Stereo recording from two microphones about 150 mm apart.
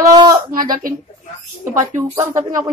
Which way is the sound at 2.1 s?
15° right (ahead or behind).